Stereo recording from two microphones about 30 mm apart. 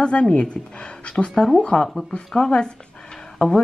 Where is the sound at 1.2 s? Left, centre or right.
Centre.